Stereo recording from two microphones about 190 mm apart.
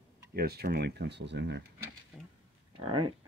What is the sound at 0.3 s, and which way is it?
Speech, 55° right (ahead or behind).